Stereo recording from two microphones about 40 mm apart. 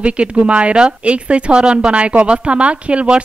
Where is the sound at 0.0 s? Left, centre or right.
Right.